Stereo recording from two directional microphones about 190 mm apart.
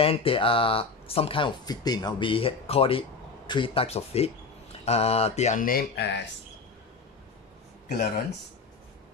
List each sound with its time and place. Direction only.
0.0 s speech: 30° left (ahead or behind); by 6.1 s 55° left (ahead or behind)